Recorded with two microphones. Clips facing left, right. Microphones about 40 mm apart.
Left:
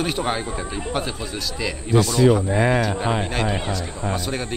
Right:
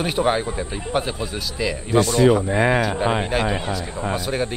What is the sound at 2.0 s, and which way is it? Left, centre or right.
Speech, right.